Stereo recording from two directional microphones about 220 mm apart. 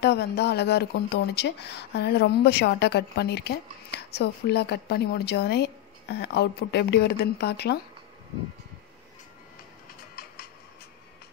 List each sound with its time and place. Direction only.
0.0 s speech: 50° left (ahead or behind)